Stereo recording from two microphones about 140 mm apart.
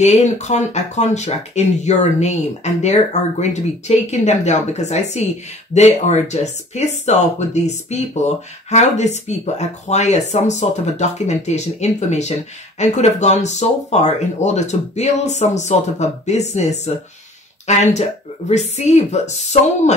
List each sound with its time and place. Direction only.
0.0 s speech: 50° left (ahead or behind)